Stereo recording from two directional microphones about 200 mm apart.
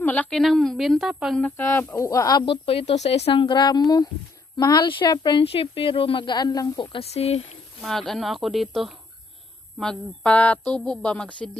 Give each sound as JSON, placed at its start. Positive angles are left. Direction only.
{"t": 0.0, "sound": "a woman's voice", "side_deg": 10}
{"t": 1.6, "sound": "speech", "side_deg": 10}
{"t": 7.8, "sound": "a woman's voice", "side_deg": 0}